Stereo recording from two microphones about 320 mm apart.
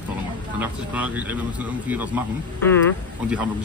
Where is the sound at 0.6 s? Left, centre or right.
Centre.